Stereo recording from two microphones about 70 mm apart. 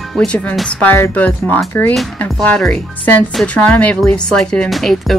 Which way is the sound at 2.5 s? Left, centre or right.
Centre.